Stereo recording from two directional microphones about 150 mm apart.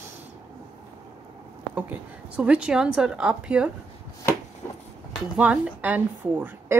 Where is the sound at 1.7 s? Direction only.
10° right (ahead or behind).